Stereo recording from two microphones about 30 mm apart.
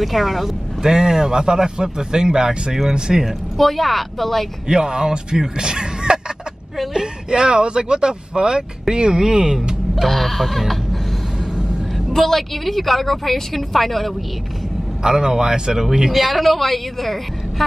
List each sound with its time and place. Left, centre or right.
0.0 s a woman's voice: centre
0.8 s speech: centre
3.1 s a woman's voice: centre
4.6 s speech: right
10.0 s a woman's voice: centre
12.2 s a woman's voice: centre
15.0 s speech: centre
16.2 s a woman's voice: centre